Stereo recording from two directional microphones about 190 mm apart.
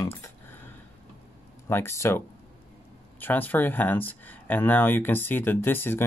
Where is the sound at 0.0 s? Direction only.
15° left (ahead or behind).